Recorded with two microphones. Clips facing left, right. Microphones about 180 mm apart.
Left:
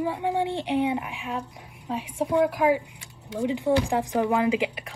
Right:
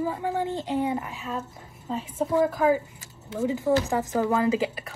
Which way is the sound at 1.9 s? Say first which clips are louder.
Even; 15° left (ahead or behind).